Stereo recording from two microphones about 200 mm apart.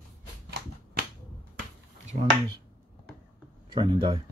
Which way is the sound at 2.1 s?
45° right (ahead or behind).